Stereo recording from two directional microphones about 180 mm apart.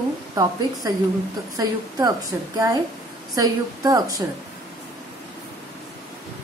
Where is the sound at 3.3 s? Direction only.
20° right (ahead or behind).